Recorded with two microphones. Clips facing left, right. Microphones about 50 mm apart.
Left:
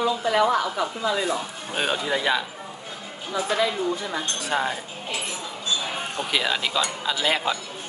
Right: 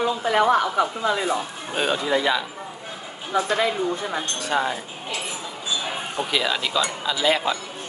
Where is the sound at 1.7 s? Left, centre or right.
Centre.